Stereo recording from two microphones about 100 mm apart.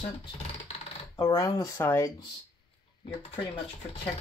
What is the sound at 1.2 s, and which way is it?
Speech, 40° left (ahead or behind).